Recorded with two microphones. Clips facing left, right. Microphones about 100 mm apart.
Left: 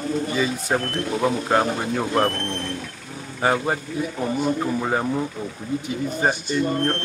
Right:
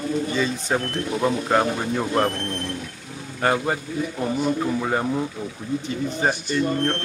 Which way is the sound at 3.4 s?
5° left (ahead or behind).